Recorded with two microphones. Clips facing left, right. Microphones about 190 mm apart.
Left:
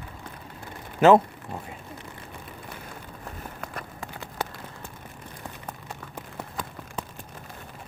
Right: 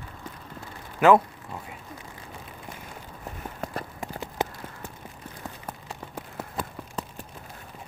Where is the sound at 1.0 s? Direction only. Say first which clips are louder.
Left 2 dB; 25° left (ahead or behind).